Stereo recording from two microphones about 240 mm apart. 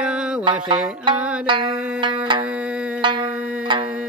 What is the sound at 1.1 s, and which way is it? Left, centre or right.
Music, centre.